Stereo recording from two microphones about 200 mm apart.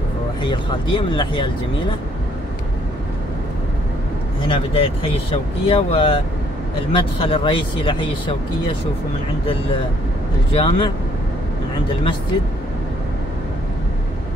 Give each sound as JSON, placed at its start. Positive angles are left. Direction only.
{"t": 0.4, "sound": "speech", "side_deg": 25}
{"t": 4.4, "sound": "speech", "side_deg": 25}
{"t": 10.5, "sound": "speech", "side_deg": 25}